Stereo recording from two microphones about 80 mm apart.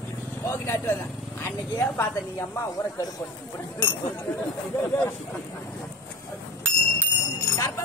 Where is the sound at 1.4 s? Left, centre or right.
Left.